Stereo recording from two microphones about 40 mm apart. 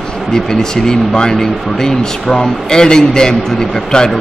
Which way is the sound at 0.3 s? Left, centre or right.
Centre.